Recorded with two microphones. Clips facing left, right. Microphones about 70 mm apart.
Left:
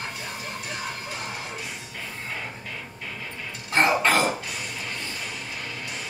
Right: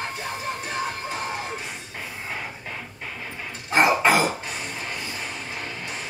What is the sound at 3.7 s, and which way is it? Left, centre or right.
Cough, centre.